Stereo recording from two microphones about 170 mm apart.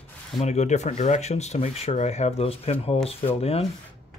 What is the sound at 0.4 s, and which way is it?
Speech, 40° left (ahead or behind).